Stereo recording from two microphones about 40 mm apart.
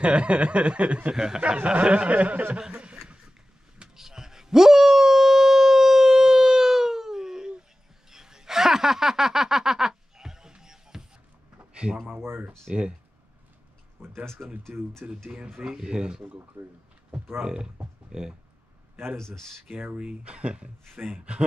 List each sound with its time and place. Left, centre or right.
0.0 s chuckle: right
1.1 s speech: centre
1.6 s chuckle: right
3.9 s dog: centre
8.1 s a sound: centre
11.7 s speech: right
12.2 s speech: right
14.0 s speech: right
14.4 s speech: centre
18.1 s speech: centre
19.1 s speech: centre
20.0 s speech: right